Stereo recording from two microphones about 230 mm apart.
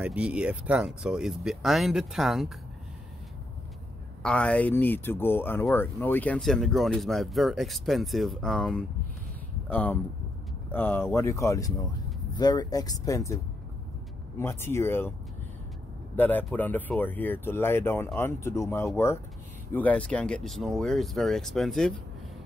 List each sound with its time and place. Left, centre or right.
0.0 s speech: centre
4.2 s speech: centre
14.4 s speech: centre
16.2 s speech: centre